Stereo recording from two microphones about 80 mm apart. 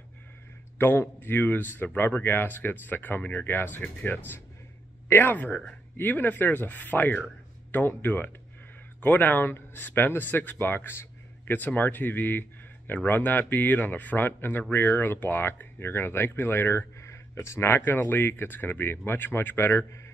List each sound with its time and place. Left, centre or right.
0.7 s a man's voice: left